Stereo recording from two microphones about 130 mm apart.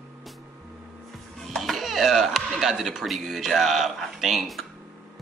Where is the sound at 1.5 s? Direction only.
Centre (ahead or behind).